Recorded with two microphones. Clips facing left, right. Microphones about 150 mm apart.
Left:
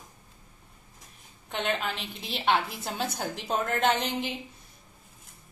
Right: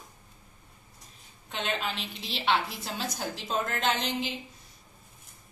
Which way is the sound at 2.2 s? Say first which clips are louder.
Left 2 dB; 55° left (ahead or behind).